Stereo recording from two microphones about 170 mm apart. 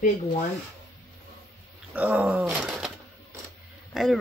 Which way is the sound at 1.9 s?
10° right (ahead or behind).